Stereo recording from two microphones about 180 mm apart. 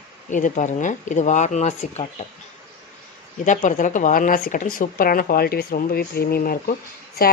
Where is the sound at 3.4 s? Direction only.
45° left (ahead or behind).